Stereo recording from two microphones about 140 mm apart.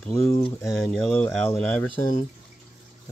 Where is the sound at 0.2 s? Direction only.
45° left (ahead or behind).